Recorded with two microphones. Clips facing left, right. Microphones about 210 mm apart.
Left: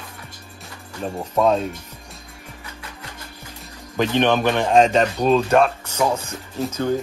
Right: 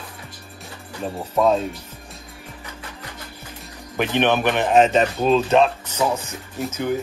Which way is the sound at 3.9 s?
15° right (ahead or behind).